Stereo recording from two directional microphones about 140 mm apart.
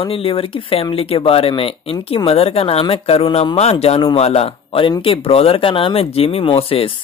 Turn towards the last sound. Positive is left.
turn(degrees=45)  # may be behind; listen again after turning